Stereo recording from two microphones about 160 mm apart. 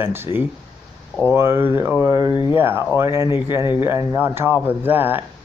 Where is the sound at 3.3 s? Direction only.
30° left (ahead or behind).